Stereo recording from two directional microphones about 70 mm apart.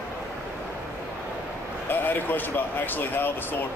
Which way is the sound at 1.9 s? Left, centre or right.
Left.